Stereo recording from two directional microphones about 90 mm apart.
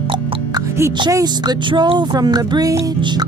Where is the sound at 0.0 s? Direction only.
90° right.